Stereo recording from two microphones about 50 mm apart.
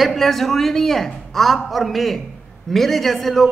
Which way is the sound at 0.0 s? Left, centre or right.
Centre.